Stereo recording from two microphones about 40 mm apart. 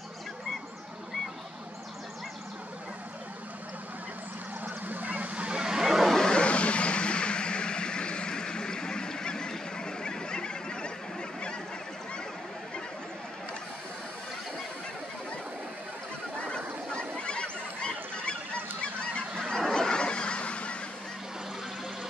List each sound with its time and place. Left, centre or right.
4.8 s vehicle: right; by 6.0 s centre
6.1 s vehicle: centre
6.4 s vehicle: left
16.3 s fowl: left
18.8 s honk: left
19.5 s honk: centre